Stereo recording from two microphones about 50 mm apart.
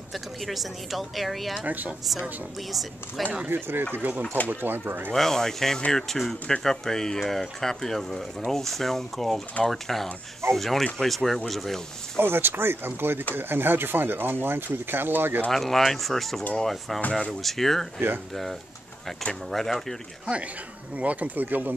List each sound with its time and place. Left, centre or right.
0.1 s speech: centre
1.7 s speech: right
3.4 s speech: right
4.0 s speech: right
5.1 s speech: centre
12.2 s speech: right
15.5 s speech: centre
19.5 s speech: centre
20.9 s speech: right